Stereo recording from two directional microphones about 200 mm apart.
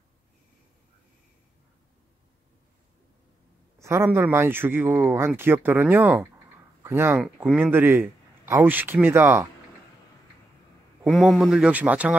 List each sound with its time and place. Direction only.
3.8 s a man's voice: 10° right (ahead or behind)
11.1 s speech: centre (ahead or behind)